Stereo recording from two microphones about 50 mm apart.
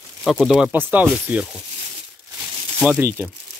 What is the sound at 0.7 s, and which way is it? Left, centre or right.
Speech, right.